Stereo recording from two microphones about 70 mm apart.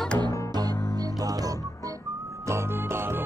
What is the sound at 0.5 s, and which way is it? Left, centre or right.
Music, right.